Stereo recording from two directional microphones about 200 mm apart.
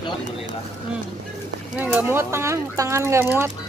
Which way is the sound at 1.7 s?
5° right (ahead or behind).